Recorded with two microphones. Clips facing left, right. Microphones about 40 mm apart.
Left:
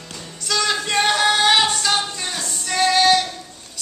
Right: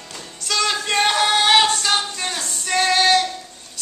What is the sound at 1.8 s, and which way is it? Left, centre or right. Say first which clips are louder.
Female singing: even; centre.